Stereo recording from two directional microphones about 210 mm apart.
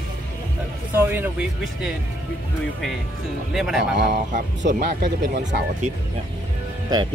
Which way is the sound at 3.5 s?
Centre (ahead or behind).